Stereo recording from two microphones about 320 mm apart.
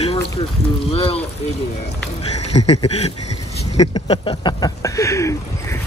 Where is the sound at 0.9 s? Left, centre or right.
Centre.